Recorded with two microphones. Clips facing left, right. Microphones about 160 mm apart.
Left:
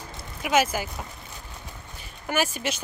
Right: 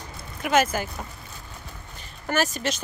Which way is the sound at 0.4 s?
10° left (ahead or behind).